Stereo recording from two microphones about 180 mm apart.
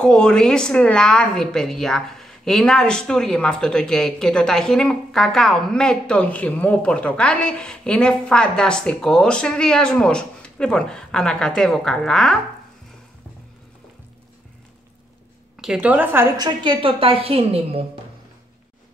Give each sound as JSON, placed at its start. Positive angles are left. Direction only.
{"t": 0.0, "sound": "a woman's voice", "side_deg": 5}
{"t": 15.6, "sound": "a woman's voice", "side_deg": -5}
{"t": 16.3, "sound": "a woman's voice", "side_deg": -25}